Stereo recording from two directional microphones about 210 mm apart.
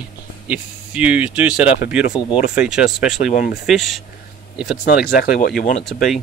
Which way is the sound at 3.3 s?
35° left (ahead or behind).